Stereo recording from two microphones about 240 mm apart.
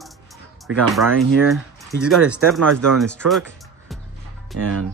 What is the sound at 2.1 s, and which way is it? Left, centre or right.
Speech, centre.